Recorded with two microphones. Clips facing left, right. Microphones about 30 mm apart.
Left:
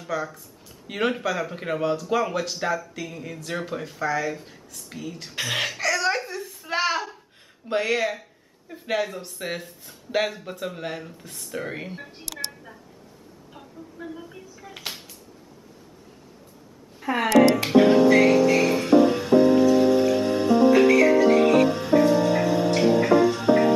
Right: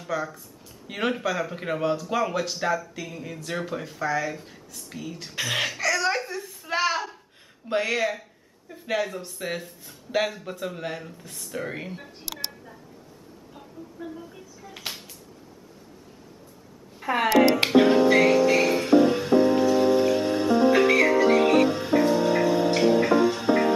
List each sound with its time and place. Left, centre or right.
0.0 s speech: centre
5.3 s a sound: centre
7.6 s speech: centre
12.3 s a sound: centre
14.0 s music: left
14.7 s music: centre
17.0 s speech: centre
17.6 s music: centre